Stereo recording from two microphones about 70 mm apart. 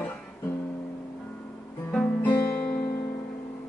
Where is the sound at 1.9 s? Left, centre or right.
Centre.